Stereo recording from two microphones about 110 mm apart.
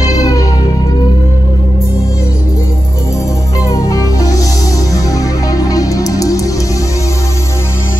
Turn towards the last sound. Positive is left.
turn(degrees=30)  # may be behind; listen again after turning